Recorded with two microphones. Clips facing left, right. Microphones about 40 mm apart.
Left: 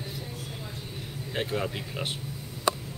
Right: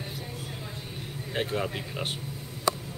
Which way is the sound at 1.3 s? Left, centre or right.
Centre.